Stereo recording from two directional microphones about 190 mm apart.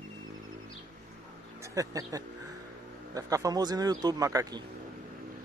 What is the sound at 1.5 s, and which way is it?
A man's voice, 15° right (ahead or behind).